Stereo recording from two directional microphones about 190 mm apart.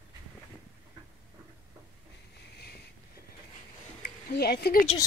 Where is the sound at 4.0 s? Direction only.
55° left (ahead or behind).